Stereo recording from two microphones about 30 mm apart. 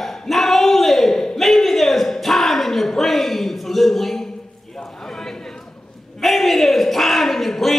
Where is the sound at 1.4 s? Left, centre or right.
Centre.